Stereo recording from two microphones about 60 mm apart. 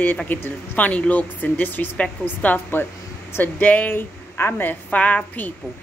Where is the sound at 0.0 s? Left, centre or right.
Left.